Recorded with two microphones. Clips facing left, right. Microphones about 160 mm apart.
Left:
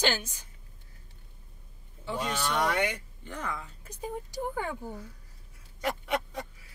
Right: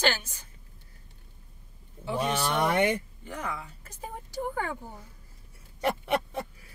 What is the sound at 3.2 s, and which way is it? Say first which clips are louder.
Speech: even; 5° right (ahead or behind).